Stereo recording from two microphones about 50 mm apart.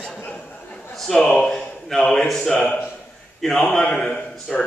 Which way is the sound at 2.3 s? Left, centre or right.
Centre.